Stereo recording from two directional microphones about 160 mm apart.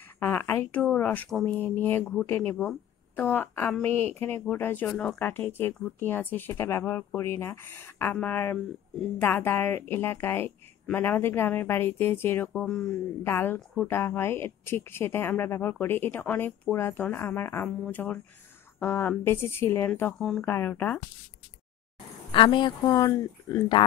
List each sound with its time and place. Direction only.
0.2 s speech: 10° left (ahead or behind)
12.6 s speech: 5° left (ahead or behind)
13.2 s speech: 15° left (ahead or behind)
20.4 s speech: 15° left (ahead or behind)
22.3 s speech: 30° left (ahead or behind)